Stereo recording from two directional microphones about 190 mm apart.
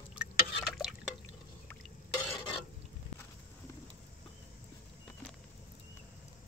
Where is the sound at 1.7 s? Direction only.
10° left (ahead or behind).